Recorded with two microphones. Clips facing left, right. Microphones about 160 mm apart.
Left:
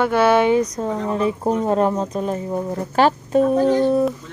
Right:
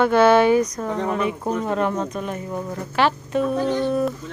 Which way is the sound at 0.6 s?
30° left (ahead or behind).